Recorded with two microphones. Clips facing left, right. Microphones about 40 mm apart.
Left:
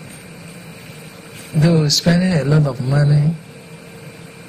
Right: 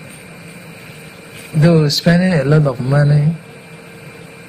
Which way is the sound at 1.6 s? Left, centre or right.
Right.